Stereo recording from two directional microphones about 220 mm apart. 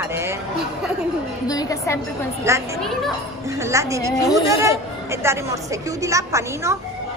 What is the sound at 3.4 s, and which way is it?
A woman's voice, 15° right (ahead or behind).